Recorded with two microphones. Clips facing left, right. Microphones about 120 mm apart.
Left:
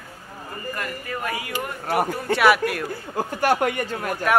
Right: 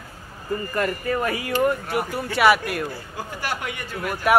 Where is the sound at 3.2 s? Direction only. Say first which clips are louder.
Left 9 dB; 50° left (ahead or behind).